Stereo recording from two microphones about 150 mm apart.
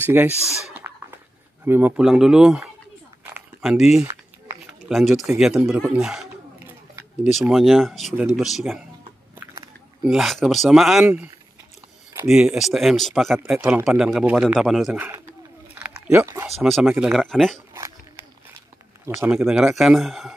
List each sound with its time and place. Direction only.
0.0 s speech: 15° right (ahead or behind)
0.8 s a sound: 15° right (ahead or behind)
2.0 s speech: 5° right (ahead or behind)
3.3 s a sound: 5° right (ahead or behind)
4.6 s speech: centre (ahead or behind)
5.9 s a sound: 5° right (ahead or behind)
7.3 s speech: centre (ahead or behind)
10.0 s speech: centre (ahead or behind)
12.3 s speech: 5° right (ahead or behind)
15.0 s speech: 20° right (ahead or behind)
15.7 s chewing: 10° right (ahead or behind)
16.5 s speech: centre (ahead or behind)
19.0 s speech: 15° right (ahead or behind)
19.3 s speech: 5° right (ahead or behind)